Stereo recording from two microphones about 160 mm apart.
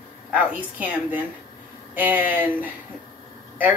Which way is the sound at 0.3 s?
10° right (ahead or behind).